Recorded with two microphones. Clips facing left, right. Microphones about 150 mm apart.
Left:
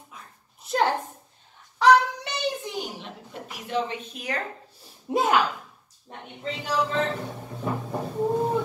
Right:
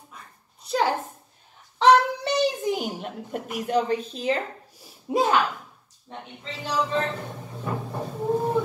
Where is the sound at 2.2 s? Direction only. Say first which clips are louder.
Right 7 dB; 45° right (ahead or behind); by 4.4 s 30° right (ahead or behind).